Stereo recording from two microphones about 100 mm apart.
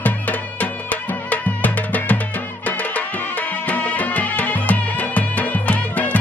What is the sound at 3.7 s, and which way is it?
Music, 15° left (ahead or behind).